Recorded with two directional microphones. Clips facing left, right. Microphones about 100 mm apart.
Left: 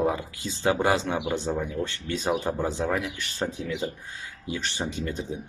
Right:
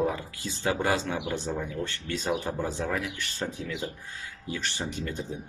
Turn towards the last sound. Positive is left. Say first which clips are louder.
# left 3 dB
turn(degrees=20)  # may be behind; listen again after turning